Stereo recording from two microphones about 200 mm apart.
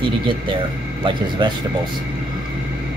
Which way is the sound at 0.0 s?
25° right (ahead or behind).